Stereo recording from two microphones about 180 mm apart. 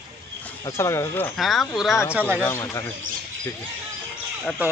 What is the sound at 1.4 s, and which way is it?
A man's voice, centre (ahead or behind).